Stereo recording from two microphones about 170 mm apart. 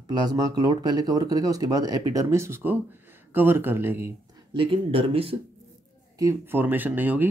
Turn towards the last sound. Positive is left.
turn(degrees=-10)  # may be behind; listen again after turning